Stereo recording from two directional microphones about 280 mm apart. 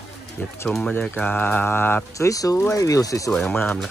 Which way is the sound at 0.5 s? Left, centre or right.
Centre.